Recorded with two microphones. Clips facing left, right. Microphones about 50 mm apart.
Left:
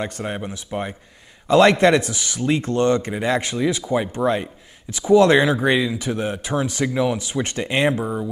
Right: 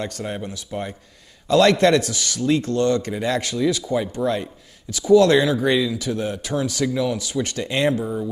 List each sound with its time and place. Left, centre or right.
0.0 s speech: left